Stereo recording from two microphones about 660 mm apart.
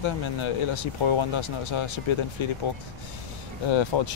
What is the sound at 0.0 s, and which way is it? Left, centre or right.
Speech, left.